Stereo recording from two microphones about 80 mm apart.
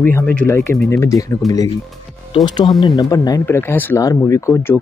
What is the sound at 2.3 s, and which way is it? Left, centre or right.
Speech, left.